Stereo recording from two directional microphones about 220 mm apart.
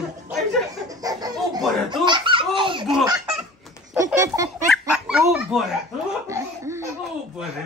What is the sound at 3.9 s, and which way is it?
Baby laughter, 10° right (ahead or behind).